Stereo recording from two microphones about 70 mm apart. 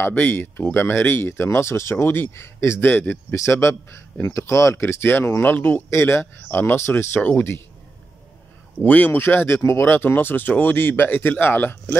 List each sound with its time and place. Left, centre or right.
0.0 s speech: left
3.3 s speech: left
8.7 s speech: left